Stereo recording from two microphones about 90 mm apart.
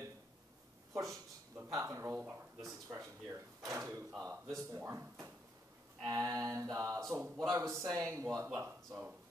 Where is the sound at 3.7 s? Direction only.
35° right (ahead or behind).